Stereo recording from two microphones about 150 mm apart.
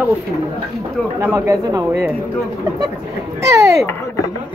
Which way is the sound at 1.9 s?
15° right (ahead or behind).